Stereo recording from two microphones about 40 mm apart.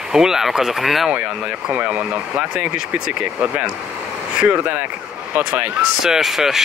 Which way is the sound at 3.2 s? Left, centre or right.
Right.